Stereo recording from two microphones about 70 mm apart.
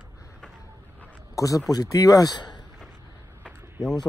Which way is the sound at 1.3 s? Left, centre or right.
Left.